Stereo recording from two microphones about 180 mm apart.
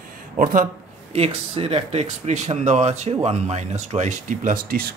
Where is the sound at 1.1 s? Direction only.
35° right (ahead or behind); by 4.9 s 55° right (ahead or behind).